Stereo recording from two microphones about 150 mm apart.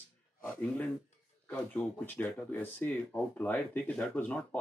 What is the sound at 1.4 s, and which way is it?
Speech, 10° left (ahead or behind).